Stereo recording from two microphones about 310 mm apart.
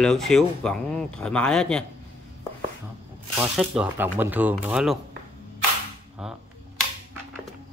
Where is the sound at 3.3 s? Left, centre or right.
Centre.